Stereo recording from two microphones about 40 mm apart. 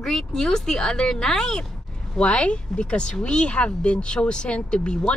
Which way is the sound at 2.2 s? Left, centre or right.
Left.